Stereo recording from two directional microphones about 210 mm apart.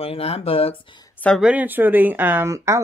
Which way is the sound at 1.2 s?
Centre (ahead or behind).